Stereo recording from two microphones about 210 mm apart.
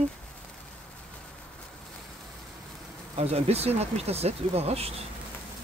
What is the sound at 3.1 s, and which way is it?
Speech, 30° right (ahead or behind).